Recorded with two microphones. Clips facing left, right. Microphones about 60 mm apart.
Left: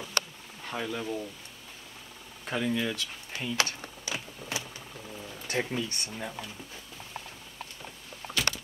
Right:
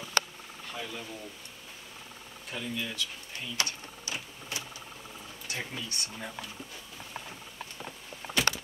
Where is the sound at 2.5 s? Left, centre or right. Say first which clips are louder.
Left 7 dB; left.